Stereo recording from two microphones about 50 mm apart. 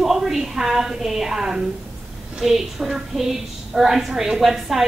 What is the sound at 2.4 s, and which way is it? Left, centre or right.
A woman's voice, centre.